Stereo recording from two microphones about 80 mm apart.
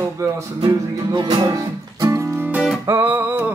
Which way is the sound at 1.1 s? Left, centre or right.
Right.